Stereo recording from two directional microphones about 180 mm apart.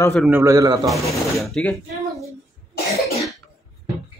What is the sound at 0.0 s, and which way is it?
Speech, 5° left (ahead or behind).